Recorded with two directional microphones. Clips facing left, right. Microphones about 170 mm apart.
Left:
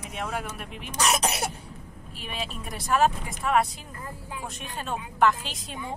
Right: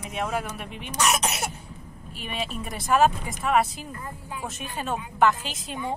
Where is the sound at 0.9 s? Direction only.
35° left (ahead or behind).